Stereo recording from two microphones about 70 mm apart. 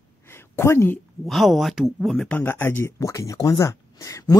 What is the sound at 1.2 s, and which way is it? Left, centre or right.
Speech, centre.